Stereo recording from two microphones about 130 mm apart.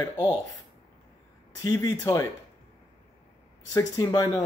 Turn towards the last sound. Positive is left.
turn(degrees=25)  # may be behind; listen again after turning